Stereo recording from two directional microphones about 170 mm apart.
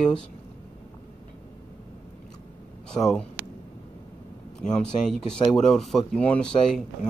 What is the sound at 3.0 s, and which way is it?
Speech, 5° left (ahead or behind).